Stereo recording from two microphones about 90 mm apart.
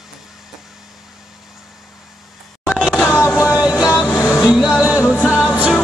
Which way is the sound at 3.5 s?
10° right (ahead or behind).